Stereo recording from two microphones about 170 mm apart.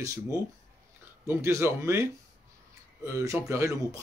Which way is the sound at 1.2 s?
15° right (ahead or behind).